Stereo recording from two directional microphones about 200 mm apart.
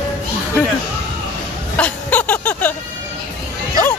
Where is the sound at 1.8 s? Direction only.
10° left (ahead or behind).